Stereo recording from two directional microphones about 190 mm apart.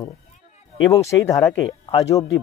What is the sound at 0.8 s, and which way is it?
Speech, 15° left (ahead or behind).